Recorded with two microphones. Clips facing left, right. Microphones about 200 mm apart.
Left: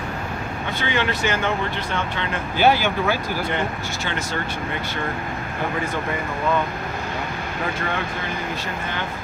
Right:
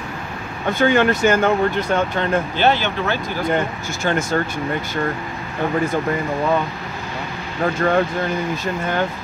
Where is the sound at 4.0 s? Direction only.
45° right (ahead or behind).